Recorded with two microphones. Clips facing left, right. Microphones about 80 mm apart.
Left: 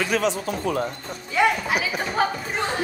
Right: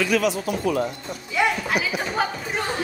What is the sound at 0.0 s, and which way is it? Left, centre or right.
Speech, left.